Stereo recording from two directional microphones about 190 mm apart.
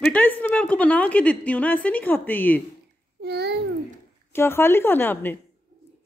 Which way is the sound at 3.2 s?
60° right (ahead or behind).